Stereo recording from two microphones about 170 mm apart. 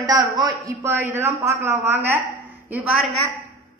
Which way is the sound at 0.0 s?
20° right (ahead or behind).